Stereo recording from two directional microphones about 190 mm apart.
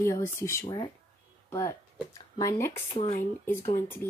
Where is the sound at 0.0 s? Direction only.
15° left (ahead or behind).